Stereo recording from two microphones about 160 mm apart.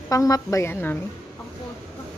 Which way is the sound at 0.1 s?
20° left (ahead or behind).